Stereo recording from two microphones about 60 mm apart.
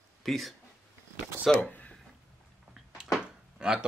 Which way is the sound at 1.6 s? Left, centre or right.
Left.